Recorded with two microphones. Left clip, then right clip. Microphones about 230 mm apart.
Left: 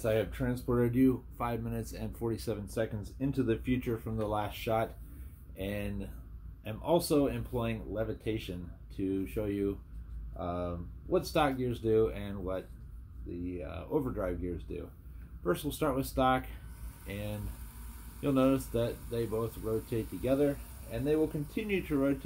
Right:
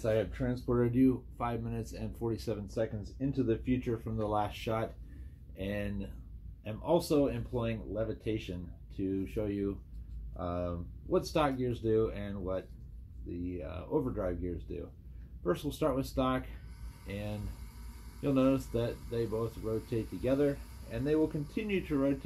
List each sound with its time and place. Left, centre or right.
0.0 s speech: centre